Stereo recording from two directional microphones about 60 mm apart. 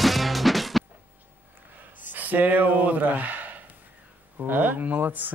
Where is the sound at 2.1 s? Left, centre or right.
Right.